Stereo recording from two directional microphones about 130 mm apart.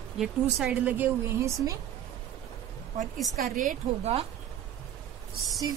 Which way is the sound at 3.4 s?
90° right.